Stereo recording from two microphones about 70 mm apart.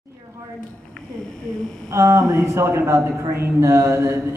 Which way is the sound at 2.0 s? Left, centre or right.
Right.